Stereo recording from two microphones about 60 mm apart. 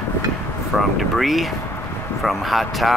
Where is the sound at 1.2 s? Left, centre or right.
Centre.